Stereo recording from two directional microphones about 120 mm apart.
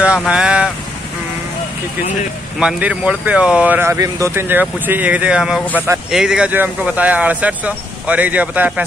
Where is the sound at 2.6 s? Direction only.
5° right (ahead or behind).